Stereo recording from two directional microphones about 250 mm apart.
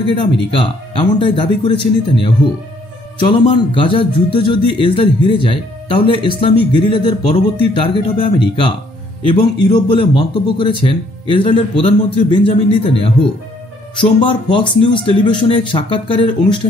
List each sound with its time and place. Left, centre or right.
0.2 s a man's voice: left
14.5 s a man's voice: centre